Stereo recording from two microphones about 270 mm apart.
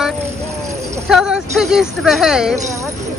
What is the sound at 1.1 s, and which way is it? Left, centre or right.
Speech, centre.